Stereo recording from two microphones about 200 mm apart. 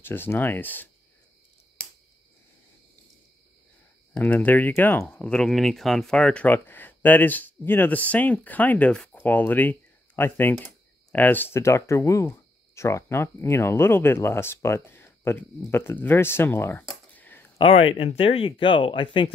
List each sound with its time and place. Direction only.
0.0 s speech: 10° left (ahead or behind)
4.1 s speech: 10° left (ahead or behind)
17.1 s a sound: 10° left (ahead or behind)
17.6 s speech: 25° left (ahead or behind)